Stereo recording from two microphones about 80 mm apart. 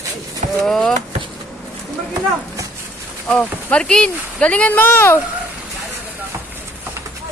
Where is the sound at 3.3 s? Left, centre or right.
Centre.